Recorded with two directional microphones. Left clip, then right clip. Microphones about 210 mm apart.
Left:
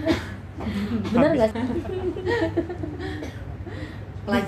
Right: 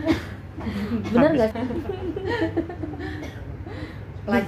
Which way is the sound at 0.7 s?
35° right (ahead or behind).